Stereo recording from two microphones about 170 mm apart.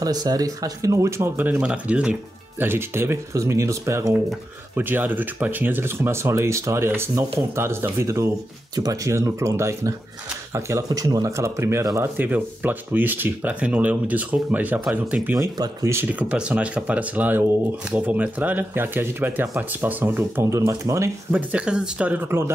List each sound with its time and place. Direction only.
0.0 s speech: 20° right (ahead or behind)
15.3 s speech: 20° right (ahead or behind)